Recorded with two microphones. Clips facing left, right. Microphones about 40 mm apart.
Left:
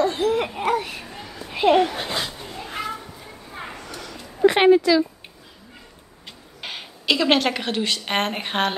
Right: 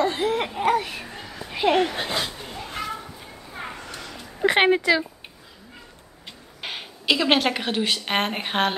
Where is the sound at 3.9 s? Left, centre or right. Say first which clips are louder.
Left 1 dB; right.